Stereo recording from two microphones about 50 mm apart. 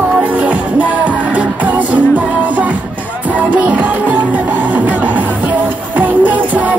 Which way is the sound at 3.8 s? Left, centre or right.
Right.